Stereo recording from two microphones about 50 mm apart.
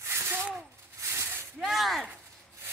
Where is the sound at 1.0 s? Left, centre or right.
Right.